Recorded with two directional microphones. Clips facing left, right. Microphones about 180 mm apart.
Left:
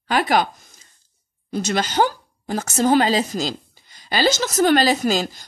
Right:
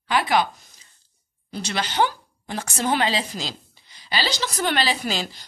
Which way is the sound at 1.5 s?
45° left (ahead or behind).